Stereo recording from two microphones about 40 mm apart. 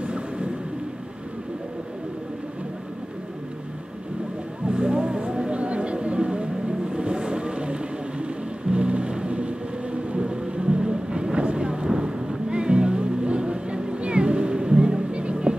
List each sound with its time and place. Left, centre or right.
0.0 s vehicle: right
4.6 s vehicle: right